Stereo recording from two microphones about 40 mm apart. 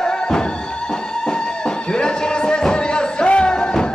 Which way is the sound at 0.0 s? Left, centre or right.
Centre.